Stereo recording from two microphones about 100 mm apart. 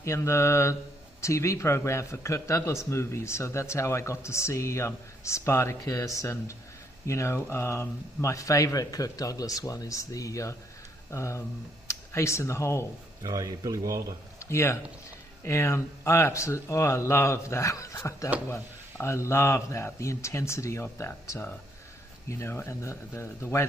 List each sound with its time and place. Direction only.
0.0 s a man's voice: 30° left (ahead or behind)
13.2 s speech: 35° right (ahead or behind)
14.4 s a man's voice: 25° left (ahead or behind)
22.3 s a man's voice: 25° left (ahead or behind)